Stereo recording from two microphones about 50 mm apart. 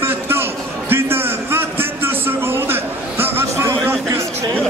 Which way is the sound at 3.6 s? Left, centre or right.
Right.